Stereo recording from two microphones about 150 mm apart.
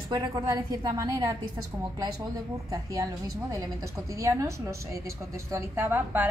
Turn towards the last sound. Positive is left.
turn(degrees=-15)  # may be behind; listen again after turning